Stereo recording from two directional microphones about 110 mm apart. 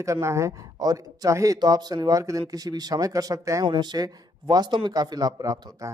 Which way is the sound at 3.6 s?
45° right (ahead or behind).